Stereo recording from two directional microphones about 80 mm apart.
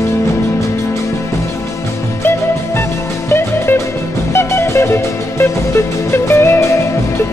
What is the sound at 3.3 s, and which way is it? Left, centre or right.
Music, left.